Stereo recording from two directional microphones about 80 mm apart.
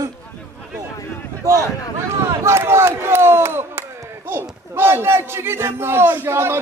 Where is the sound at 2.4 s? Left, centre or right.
Right.